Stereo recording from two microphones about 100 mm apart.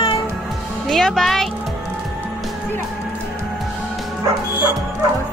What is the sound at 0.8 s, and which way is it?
Speech, 5° left (ahead or behind).